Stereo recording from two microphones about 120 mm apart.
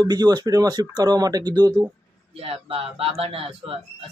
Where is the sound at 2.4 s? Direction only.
50° right (ahead or behind).